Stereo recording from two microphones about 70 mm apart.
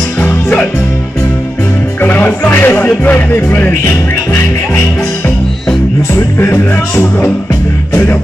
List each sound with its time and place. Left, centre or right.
0.2 s music: left
2.0 s music: left
6.1 s music: left
7.9 s music: left